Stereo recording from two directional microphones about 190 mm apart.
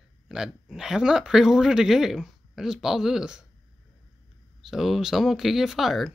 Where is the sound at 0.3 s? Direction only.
5° right (ahead or behind).